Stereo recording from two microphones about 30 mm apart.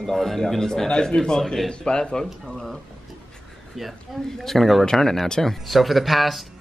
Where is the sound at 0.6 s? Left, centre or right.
Centre.